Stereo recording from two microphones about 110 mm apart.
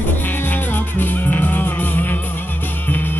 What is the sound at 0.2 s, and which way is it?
Music, 20° left (ahead or behind).